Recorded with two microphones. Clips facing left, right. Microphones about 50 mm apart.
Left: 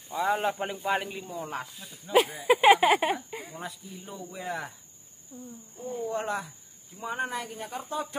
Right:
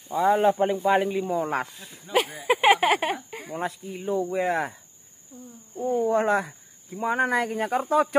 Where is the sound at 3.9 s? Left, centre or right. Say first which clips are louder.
Right 15 dB; right.